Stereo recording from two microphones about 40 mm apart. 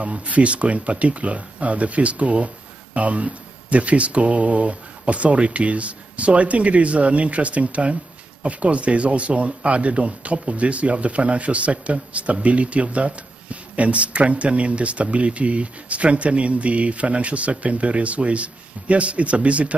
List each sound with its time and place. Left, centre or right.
0.0 s speech: right